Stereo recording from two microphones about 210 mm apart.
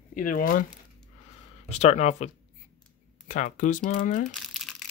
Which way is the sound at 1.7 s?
30° left (ahead or behind).